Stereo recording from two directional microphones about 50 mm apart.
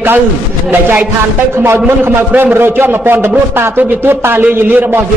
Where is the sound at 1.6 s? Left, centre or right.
Right.